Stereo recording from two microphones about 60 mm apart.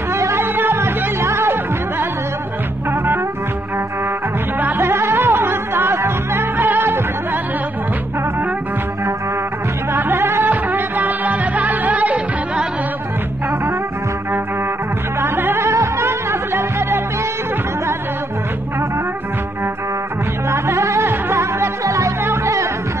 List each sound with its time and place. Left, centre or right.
0.1 s music: right
0.4 s music: right
4.6 s music: right
4.8 s music: right
9.9 s music: right
10.5 s music: right
15.1 s music: right
15.6 s music: right
20.4 s music: right
22.2 s music: right